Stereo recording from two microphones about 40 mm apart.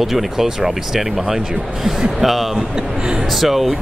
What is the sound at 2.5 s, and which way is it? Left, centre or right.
Speech, centre.